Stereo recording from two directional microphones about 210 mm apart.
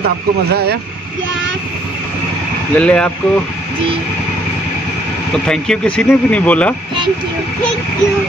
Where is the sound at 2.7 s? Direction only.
5° left (ahead or behind).